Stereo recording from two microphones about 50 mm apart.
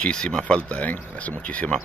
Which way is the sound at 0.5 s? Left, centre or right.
Left.